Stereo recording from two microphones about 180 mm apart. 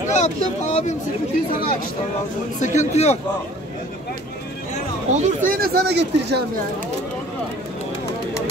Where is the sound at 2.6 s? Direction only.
40° left (ahead or behind).